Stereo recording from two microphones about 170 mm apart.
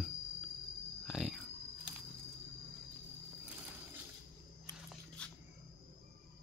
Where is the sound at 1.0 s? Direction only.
Centre (ahead or behind).